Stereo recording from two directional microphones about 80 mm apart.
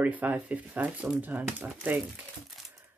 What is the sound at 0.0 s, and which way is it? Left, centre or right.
Speech, centre.